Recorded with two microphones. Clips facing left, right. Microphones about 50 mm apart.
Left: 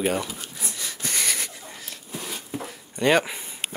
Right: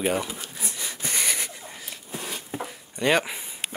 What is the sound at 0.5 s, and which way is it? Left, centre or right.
Wheeze, centre.